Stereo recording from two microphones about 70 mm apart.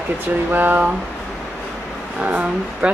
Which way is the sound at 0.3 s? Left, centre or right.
Right.